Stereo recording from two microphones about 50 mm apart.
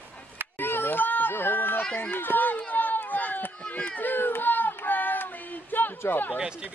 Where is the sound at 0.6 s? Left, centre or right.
Left.